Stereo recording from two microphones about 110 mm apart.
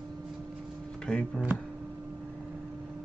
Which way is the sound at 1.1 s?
10° left (ahead or behind).